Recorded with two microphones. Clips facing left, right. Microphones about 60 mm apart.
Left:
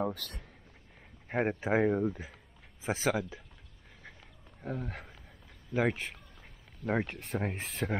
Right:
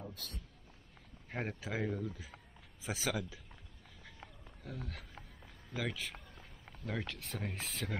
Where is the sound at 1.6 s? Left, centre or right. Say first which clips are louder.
Left 11 dB; left.